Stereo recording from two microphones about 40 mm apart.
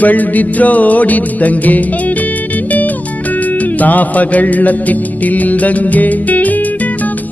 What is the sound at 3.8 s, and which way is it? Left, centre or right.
Music, left.